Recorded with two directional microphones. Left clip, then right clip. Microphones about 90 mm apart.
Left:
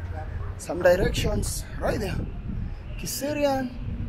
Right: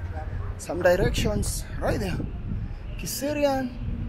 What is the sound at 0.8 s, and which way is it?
Speech, 25° right (ahead or behind).